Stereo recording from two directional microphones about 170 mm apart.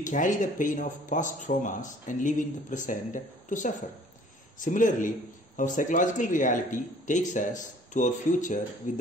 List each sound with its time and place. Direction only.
0.0 s speech: 50° left (ahead or behind)